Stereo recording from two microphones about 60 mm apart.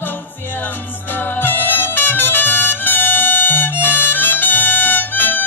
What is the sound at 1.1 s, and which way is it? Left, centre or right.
Music, left.